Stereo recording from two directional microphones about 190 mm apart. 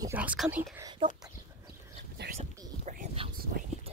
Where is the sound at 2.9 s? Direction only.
40° right (ahead or behind).